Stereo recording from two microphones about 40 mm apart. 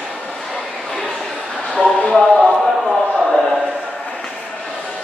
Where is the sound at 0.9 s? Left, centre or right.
Centre.